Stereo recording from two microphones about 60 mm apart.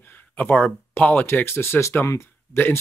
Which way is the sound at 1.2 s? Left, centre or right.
Left.